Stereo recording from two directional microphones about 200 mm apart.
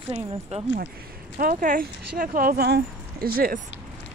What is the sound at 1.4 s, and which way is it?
Speech, 45° right (ahead or behind).